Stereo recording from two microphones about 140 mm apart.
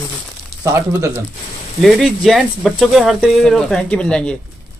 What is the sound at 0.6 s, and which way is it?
Speech, 20° right (ahead or behind).